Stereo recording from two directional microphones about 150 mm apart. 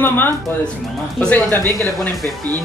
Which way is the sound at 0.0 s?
15° left (ahead or behind).